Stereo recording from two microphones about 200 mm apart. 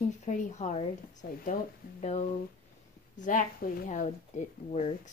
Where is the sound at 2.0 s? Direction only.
35° left (ahead or behind).